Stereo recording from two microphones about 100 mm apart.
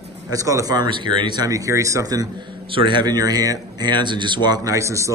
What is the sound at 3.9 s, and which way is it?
A man's voice, 50° right (ahead or behind).